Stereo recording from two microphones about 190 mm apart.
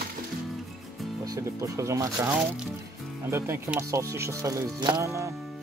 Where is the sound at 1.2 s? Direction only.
15° right (ahead or behind).